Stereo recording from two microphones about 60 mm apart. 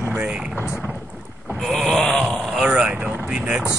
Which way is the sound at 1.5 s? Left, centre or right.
Centre.